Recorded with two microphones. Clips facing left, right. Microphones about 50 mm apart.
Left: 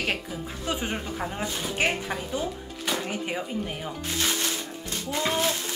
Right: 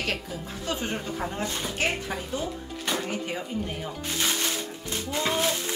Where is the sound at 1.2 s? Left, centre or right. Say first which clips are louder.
Even; centre.